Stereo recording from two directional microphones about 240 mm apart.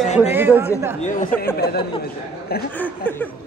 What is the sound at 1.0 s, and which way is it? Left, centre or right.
Speech, left.